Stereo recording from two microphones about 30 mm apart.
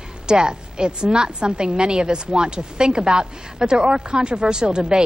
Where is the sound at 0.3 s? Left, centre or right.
Right.